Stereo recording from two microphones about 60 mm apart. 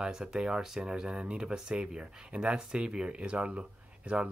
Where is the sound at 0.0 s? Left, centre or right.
Centre.